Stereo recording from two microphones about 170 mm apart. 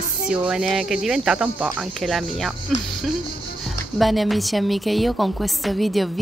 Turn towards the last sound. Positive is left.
turn(degrees=0)  # may be behind; listen again after turning